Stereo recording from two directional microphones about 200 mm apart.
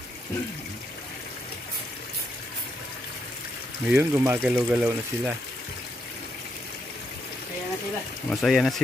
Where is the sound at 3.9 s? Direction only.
10° right (ahead or behind).